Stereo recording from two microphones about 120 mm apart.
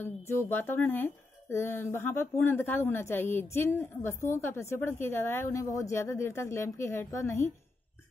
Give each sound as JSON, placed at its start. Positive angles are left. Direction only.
{"t": 0.0, "sound": "speech", "side_deg": 20}